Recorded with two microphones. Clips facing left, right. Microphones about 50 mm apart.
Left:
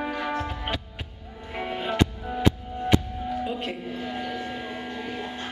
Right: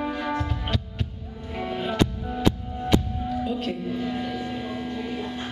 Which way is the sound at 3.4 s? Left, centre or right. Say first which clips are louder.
Right 3 dB; left.